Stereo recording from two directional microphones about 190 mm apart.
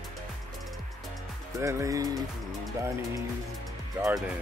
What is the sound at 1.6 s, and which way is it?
Speech, 15° right (ahead or behind).